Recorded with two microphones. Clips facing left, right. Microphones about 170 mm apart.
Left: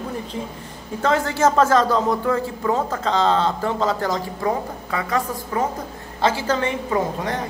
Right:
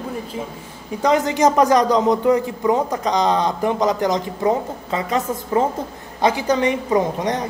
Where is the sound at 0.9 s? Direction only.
15° right (ahead or behind).